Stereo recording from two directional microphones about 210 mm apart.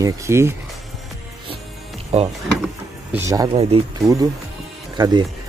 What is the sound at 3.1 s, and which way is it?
Speech, 15° right (ahead or behind).